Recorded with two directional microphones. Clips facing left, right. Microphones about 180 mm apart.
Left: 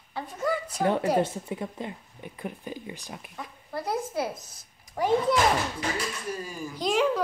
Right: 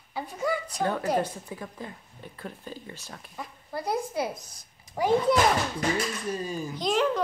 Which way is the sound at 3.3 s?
Centre (ahead or behind).